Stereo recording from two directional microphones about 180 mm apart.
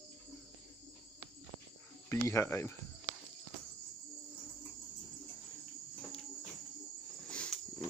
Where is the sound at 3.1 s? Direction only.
50° left (ahead or behind).